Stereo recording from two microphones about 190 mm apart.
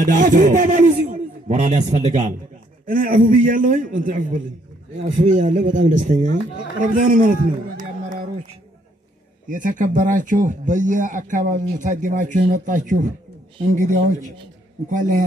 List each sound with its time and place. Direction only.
0.0 s a man's voice: 45° right (ahead or behind)
9.5 s a man's voice: 45° right (ahead or behind)